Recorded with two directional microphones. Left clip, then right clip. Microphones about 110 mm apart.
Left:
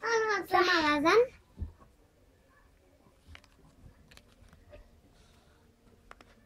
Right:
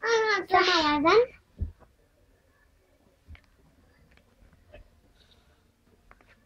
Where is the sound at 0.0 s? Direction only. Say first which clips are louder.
Right 5 dB; 45° left (ahead or behind).